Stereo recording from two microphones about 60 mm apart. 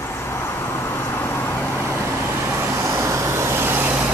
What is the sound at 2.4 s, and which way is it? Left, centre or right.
Vehicle, right.